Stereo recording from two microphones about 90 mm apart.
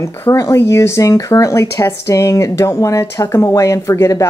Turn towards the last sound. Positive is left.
turn(degrees=35)  # may be behind; listen again after turning